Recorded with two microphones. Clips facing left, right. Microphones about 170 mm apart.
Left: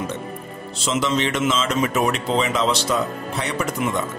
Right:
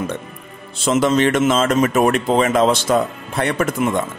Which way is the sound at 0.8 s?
50° right (ahead or behind).